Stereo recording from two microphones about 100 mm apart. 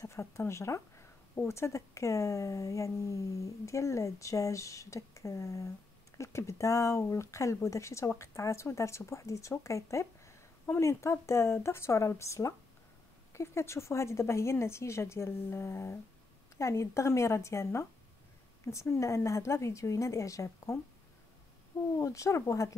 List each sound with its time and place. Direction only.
0.0 s a woman's voice: 30° left (ahead or behind)
21.9 s speech: 30° left (ahead or behind)